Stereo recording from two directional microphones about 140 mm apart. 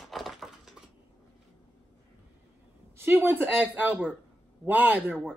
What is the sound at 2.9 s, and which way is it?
Speech, 15° right (ahead or behind).